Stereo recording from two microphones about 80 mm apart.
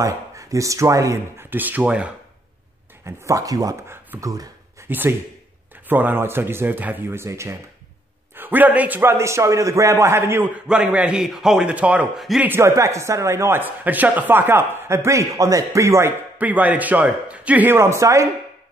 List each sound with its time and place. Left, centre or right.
0.0 s speech: right
1.5 s speech: right
3.1 s speech: right
4.2 s a sound: right
4.8 s speech: right
8.4 s speech: right
9.1 s speech: right
10.5 s a man's voice: centre
12.4 s speech: right
16.3 s speech: centre
17.6 s speech: right